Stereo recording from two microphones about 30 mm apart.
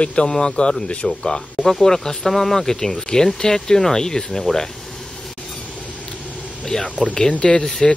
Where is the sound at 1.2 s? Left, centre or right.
Left.